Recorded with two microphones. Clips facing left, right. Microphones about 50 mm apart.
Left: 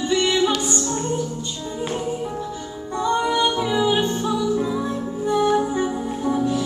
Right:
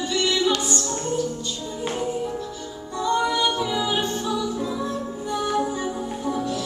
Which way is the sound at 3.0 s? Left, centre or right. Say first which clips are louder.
Left 2 dB; left.